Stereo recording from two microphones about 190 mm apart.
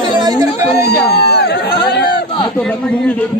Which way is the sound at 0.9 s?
60° left (ahead or behind).